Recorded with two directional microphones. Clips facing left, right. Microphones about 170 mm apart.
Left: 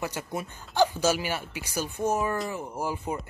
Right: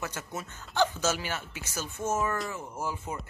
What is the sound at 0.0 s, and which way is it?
Speech, 10° left (ahead or behind).